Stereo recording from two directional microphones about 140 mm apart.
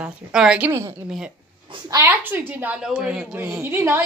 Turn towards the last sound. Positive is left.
turn(degrees=-15)  # may be behind; listen again after turning